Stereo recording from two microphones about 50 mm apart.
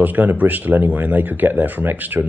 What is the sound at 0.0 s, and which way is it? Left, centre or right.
Speech, right.